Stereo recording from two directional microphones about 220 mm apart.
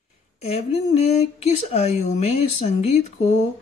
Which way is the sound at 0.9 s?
30° left (ahead or behind).